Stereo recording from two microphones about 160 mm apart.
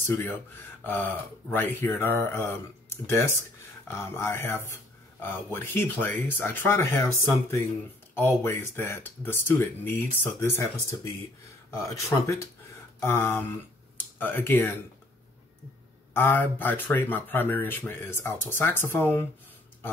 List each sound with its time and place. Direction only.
0.0 s speech: 15° left (ahead or behind)
3.8 s speech: 15° left (ahead or behind)
8.1 s speech: 15° left (ahead or behind)
16.1 s speech: 15° left (ahead or behind)